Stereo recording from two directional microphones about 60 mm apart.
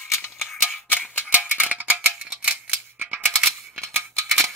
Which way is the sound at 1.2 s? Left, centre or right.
Right.